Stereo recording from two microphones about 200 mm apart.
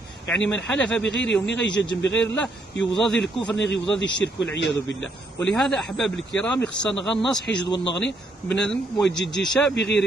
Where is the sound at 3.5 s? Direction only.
60° left (ahead or behind).